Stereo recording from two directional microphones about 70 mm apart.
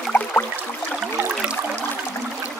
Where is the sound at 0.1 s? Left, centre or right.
Left.